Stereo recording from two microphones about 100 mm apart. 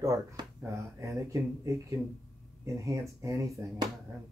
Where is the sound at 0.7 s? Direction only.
30° right (ahead or behind).